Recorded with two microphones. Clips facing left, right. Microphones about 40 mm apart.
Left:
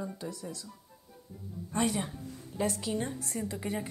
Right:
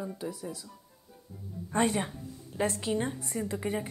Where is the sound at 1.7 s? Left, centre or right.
Right.